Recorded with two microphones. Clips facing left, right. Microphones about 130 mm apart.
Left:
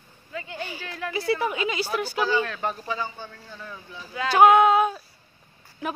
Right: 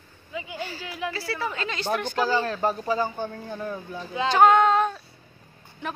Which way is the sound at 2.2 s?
40° right (ahead or behind).